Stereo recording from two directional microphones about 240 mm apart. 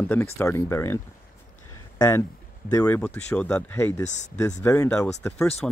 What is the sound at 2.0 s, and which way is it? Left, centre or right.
Speech, centre.